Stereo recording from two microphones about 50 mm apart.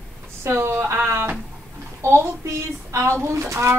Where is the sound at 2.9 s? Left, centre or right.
Right.